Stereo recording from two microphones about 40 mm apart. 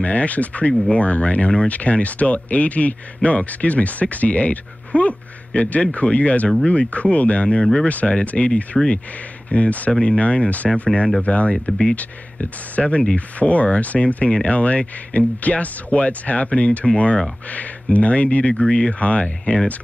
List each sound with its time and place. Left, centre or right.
0.0 s speech: left